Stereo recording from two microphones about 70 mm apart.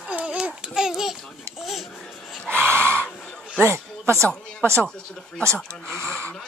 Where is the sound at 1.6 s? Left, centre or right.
Centre.